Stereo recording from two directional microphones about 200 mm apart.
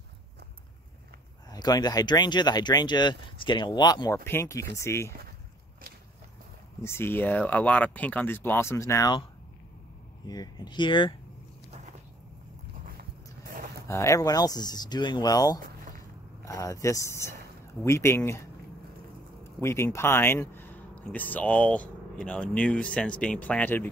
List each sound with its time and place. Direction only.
1.5 s speech: 20° left (ahead or behind)
6.8 s speech: 10° left (ahead or behind)
10.2 s speech: 20° left (ahead or behind)
13.8 s speech: 15° left (ahead or behind)
19.6 s speech: 15° left (ahead or behind)